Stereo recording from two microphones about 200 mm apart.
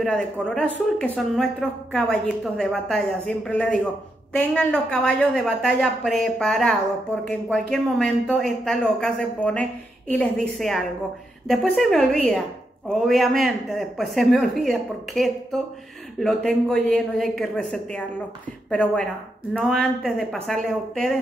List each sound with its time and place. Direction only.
0.0 s speech: 5° left (ahead or behind)